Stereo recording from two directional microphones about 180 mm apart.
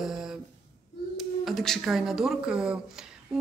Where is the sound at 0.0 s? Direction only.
5° right (ahead or behind).